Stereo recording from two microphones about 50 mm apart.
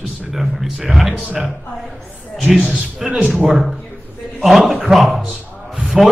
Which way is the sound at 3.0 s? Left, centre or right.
Right.